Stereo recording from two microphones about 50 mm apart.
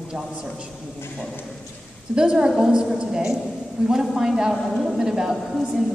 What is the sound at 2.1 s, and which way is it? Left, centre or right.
A woman's voice, centre.